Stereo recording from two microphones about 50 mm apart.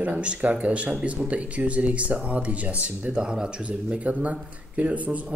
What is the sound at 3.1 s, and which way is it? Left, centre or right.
Speech, centre.